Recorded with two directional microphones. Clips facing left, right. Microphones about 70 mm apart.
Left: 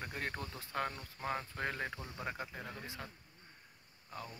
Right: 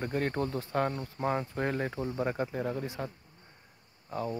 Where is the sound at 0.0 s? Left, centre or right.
Centre.